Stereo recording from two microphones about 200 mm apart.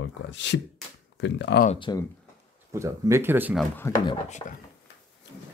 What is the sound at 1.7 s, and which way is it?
Speech, 25° left (ahead or behind).